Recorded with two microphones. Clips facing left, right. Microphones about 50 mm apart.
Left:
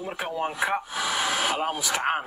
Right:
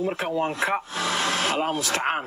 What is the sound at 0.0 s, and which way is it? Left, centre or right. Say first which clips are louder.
Speech: right 4 dB; centre.